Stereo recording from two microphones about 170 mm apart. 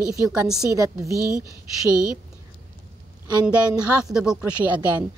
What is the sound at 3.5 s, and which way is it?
Speech, 5° right (ahead or behind).